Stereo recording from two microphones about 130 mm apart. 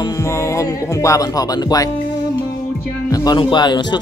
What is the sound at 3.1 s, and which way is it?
Music, 30° left (ahead or behind).